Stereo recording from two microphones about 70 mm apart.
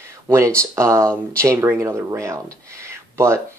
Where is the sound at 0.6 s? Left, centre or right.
Right.